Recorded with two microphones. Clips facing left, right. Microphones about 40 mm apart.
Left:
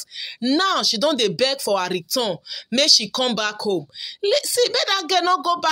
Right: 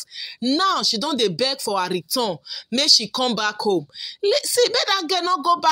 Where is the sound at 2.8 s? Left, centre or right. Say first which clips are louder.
Right 1 dB; left.